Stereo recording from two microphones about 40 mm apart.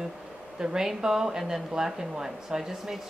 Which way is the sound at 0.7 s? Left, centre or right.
Centre.